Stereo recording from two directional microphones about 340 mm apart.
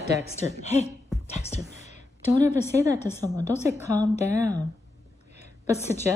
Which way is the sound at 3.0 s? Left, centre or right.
Centre.